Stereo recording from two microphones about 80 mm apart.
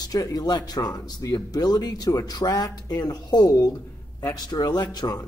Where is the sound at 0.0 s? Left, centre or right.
Left.